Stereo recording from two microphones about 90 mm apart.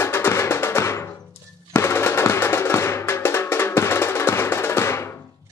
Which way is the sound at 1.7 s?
30° left (ahead or behind).